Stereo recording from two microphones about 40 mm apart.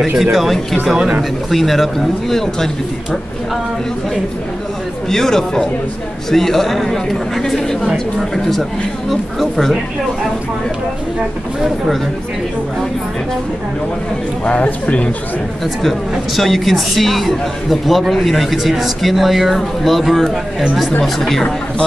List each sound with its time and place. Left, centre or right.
0.2 s speech: centre
5.1 s speech: centre
14.4 s speech: left
15.6 s speech: centre